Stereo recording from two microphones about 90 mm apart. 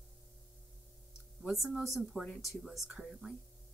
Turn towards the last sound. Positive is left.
turn(degrees=-5)  # may be behind; listen again after turning